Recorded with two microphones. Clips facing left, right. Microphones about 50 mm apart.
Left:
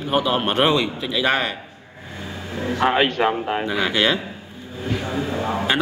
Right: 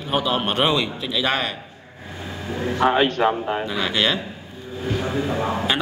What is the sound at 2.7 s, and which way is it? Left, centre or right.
Speech, centre.